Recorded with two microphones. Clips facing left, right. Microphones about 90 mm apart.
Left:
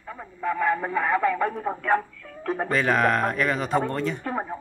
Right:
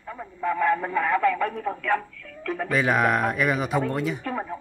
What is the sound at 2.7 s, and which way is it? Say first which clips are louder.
Speech: even; 5° right (ahead or behind).